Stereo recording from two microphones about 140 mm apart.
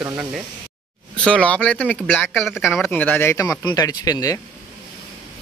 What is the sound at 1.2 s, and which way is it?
Speech, 10° left (ahead or behind).